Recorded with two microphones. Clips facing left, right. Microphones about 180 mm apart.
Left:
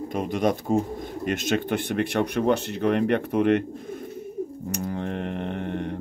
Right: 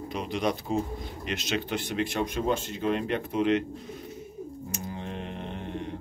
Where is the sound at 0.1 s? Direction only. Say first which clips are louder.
Left 5 dB; 50° left (ahead or behind).